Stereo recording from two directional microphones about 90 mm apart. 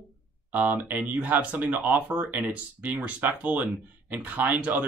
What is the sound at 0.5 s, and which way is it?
Speech, 20° right (ahead or behind).